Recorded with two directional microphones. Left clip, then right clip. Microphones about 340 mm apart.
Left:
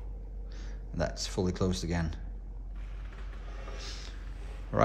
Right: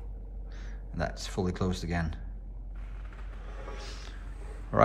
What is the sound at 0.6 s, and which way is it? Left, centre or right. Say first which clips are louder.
Speech: left 1 dB; centre.